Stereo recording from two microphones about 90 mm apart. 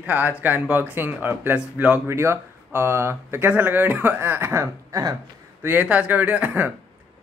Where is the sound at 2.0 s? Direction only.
30° right (ahead or behind).